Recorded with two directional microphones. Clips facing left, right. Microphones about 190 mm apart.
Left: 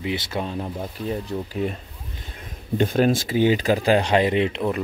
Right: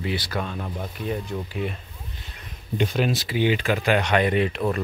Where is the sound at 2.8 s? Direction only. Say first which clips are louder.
Left 5 dB; 50° left (ahead or behind).